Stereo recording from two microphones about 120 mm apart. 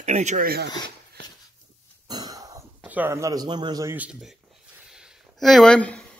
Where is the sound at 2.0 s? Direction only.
35° right (ahead or behind).